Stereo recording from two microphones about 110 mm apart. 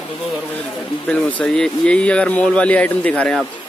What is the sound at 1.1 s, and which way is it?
Speech, 10° left (ahead or behind).